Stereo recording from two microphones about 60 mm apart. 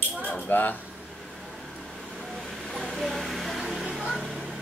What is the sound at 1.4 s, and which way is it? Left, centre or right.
Vehicle, centre.